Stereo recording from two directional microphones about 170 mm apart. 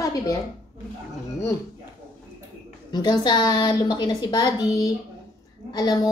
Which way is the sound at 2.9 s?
25° left (ahead or behind).